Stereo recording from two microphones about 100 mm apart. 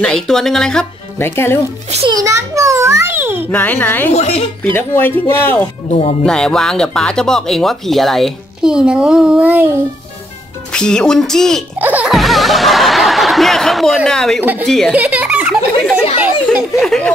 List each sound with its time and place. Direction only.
0.0 s speech: 5° left (ahead or behind)
1.1 s a woman's voice: 25° left (ahead or behind)
2.0 s a sound: 35° right (ahead or behind)
3.5 s a woman's voice: 15° left (ahead or behind)
4.1 s speech: 90° left
4.7 s a woman's voice: 20° left (ahead or behind)
6.2 s speech: 5° left (ahead or behind)
8.7 s a child's voice: 10° right (ahead or behind)
10.7 s speech: 10° left (ahead or behind)
11.8 s a child's voice: 15° right (ahead or behind)
12.1 s snicker: centre (ahead or behind)
14.0 s speech: 5° left (ahead or behind)
14.4 s a woman's voice: 20° right (ahead or behind)
16.7 s speech: 5° left (ahead or behind)